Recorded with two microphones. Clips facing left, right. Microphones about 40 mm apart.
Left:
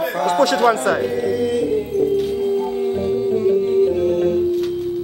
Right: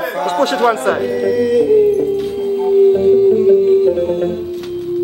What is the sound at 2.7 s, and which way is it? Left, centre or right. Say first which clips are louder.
Music: right 10 dB; right.